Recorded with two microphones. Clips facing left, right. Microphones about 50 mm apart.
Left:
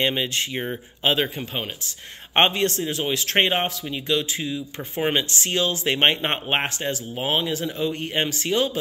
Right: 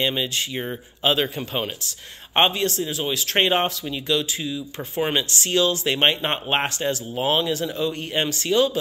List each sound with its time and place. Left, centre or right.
0.0 s speech: left
1.0 s speech: left
1.4 s speech: centre
2.3 s speech: left
3.4 s speech: centre; by 6.4 s left
6.4 s speech: centre